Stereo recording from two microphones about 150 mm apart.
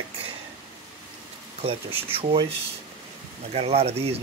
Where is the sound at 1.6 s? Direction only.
40° right (ahead or behind).